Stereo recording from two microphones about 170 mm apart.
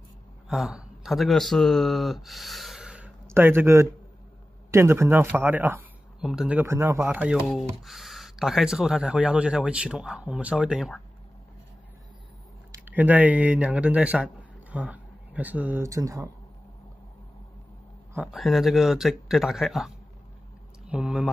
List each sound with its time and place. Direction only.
0.5 s speech: 5° right (ahead or behind)
12.8 s a man's voice: 10° right (ahead or behind)
18.1 s speech: 5° right (ahead or behind)